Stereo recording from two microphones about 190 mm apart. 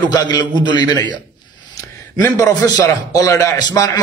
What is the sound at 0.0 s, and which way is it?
A man's voice, 20° left (ahead or behind).